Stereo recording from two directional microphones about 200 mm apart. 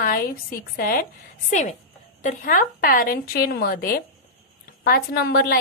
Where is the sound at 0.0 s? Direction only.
45° left (ahead or behind).